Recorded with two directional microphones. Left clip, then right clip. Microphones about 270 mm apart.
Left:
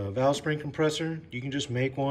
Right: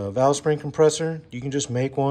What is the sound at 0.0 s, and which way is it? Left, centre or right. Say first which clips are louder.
Speech: right 6 dB; centre.